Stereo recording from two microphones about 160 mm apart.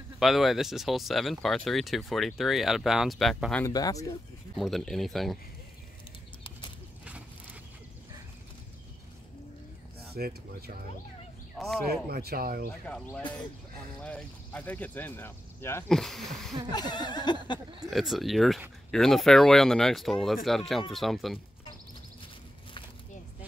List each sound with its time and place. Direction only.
0.2 s speech: centre (ahead or behind)
3.6 s a sound: 20° left (ahead or behind)
4.6 s speech: centre (ahead or behind)
10.1 s speech: 65° right (ahead or behind)
11.5 s speech: centre (ahead or behind)
12.1 s speech: 70° right (ahead or behind)
12.8 s speech: 10° left (ahead or behind)
15.9 s speech: centre (ahead or behind)
16.7 s a sound: 25° left (ahead or behind)
17.8 s speech: centre (ahead or behind)